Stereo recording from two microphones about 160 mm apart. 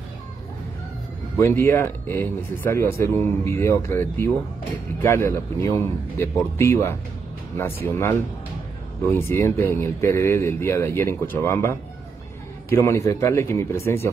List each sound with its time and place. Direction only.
1.3 s a man's voice: 15° left (ahead or behind)